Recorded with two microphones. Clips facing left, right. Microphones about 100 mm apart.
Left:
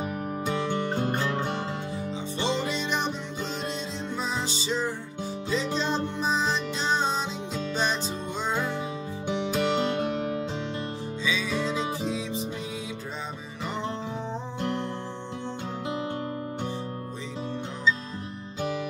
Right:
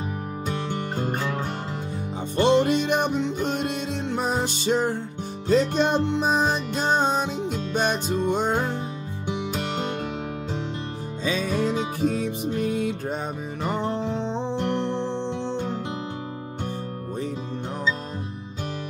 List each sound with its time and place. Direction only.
0.9 s music: 5° right (ahead or behind)
2.3 s music: 55° right (ahead or behind)
11.2 s music: 50° right (ahead or behind)